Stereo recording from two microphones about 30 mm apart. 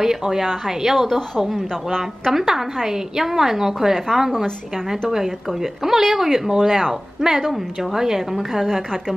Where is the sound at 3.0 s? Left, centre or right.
Centre.